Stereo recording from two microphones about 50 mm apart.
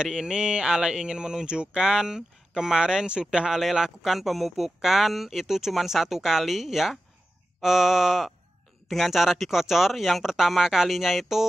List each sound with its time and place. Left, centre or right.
0.0 s speech: centre